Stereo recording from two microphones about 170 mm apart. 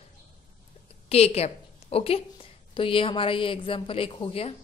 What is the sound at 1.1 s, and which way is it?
A woman's voice, 35° left (ahead or behind).